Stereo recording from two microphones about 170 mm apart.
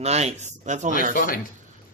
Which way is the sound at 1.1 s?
55° left (ahead or behind).